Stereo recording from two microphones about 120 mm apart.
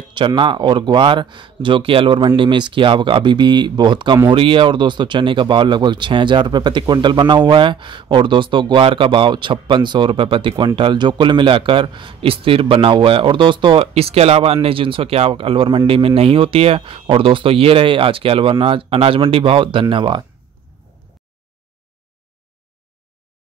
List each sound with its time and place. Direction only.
0.1 s speech: 40° right (ahead or behind)